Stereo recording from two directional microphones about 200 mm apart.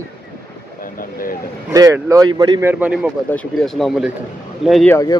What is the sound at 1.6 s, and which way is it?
Speech, 15° right (ahead or behind).